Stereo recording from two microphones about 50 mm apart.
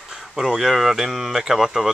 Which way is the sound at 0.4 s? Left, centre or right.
Centre.